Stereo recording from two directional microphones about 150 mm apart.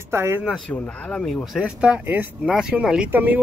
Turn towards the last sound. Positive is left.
turn(degrees=-10)  # may be behind; listen again after turning